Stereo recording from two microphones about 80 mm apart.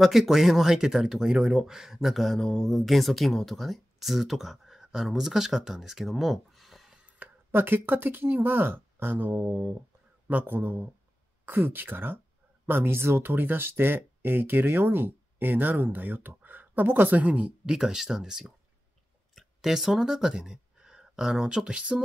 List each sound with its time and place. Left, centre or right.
0.0 s speech: centre
7.2 s a sound: right
7.5 s speech: right